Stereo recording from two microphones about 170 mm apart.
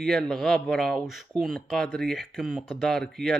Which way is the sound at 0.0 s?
5° left (ahead or behind).